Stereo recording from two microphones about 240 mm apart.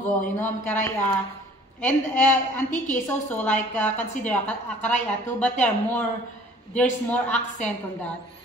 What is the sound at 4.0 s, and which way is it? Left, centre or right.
Speech, left.